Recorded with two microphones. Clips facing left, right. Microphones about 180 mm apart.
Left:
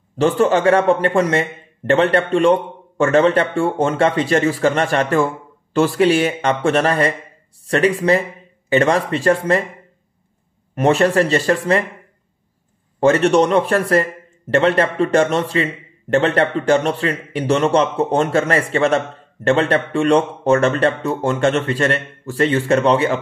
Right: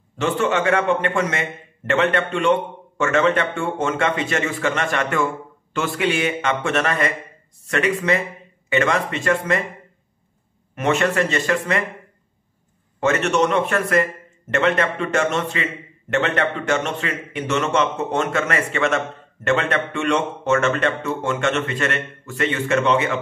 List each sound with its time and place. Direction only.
0.2 s a man's voice: 35° left (ahead or behind)
10.7 s a man's voice: 35° left (ahead or behind)
13.0 s a man's voice: 35° left (ahead or behind)